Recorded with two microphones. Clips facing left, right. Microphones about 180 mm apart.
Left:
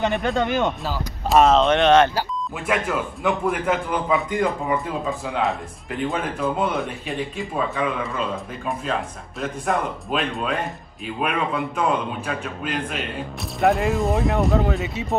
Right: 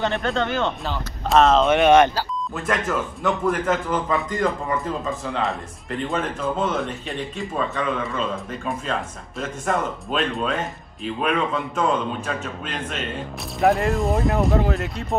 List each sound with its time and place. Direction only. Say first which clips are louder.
0.0 s speech: left 1 dB; 15° left (ahead or behind)
0.8 s speech: left 1 dB; 5° left (ahead or behind)
1.7 s speech: right 1 dB; 10° right (ahead or behind)
2.1 s speech: left 1 dB; 10° left (ahead or behind)